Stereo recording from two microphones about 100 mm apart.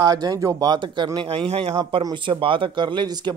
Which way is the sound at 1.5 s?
75° right (ahead or behind).